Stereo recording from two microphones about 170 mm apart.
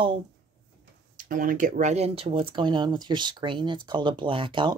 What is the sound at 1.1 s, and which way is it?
Speech, 55° right (ahead or behind).